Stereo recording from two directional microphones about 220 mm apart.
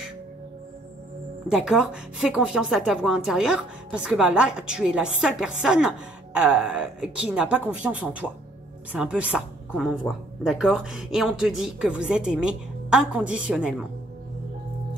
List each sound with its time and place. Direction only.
1.5 s a woman's voice: 5° right (ahead or behind)